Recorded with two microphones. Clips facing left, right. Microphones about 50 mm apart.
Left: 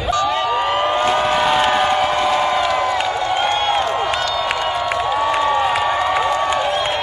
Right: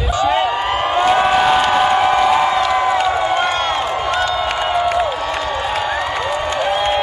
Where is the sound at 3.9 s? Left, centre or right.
Centre.